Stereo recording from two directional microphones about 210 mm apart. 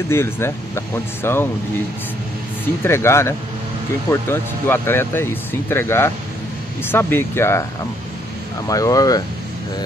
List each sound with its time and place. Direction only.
0.1 s speech: 10° left (ahead or behind)
2.8 s speech: 10° left (ahead or behind)
8.6 s speech: 15° left (ahead or behind)